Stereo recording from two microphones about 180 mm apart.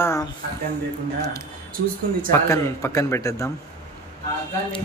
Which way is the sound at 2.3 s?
15° left (ahead or behind).